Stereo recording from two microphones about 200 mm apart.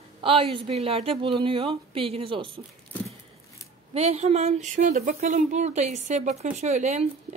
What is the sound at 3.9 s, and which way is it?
Speech, 30° right (ahead or behind).